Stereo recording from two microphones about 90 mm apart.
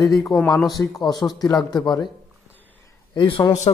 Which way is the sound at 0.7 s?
45° left (ahead or behind).